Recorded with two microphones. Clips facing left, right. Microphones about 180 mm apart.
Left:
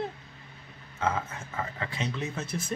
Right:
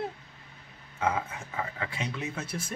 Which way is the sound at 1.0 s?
10° right (ahead or behind).